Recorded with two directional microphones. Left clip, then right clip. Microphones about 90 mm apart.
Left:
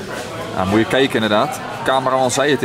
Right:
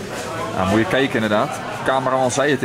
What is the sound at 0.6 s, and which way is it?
Speech, 10° left (ahead or behind).